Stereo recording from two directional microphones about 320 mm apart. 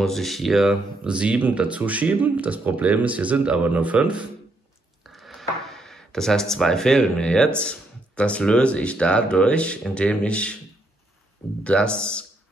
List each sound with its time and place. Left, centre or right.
0.0 s speech: centre
5.0 s a sound: centre
8.2 s speech: centre
11.6 s speech: centre